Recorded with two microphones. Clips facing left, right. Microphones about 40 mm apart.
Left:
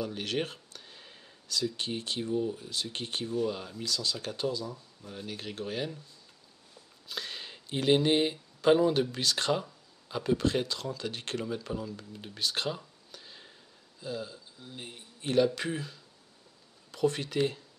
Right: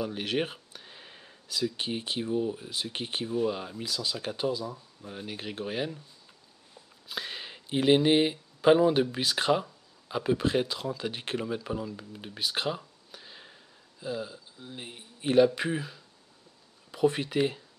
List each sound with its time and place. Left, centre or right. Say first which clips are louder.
0.0 s speech: right 3 dB; centre